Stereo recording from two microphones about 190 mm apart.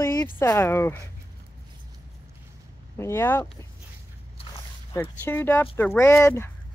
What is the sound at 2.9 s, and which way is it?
Speech, 15° left (ahead or behind).